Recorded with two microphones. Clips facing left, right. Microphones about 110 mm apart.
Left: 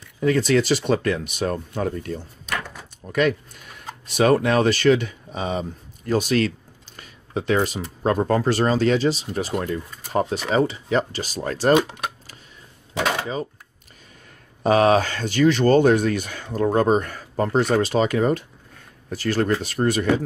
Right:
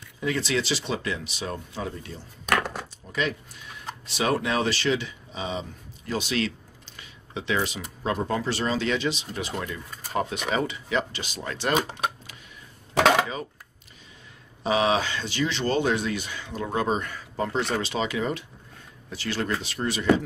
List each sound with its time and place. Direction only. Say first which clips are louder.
0.2 s speech: left 8 dB; 45° left (ahead or behind)
2.4 s a sound: right 8 dB; 75° right (ahead or behind)
3.1 s speech: left 8 dB; 55° left (ahead or behind)
14.6 s speech: left 6 dB; 50° left (ahead or behind)